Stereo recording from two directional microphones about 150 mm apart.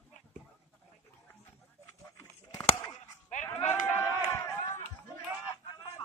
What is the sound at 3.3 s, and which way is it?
Sheep, 55° left (ahead or behind).